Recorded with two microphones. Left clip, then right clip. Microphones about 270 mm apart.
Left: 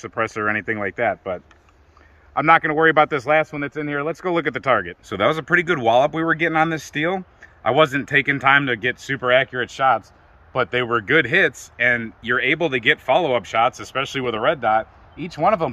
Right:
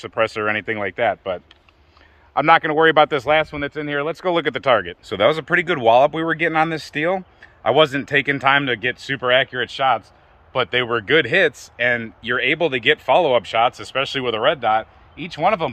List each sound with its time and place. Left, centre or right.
0.0 s speech: right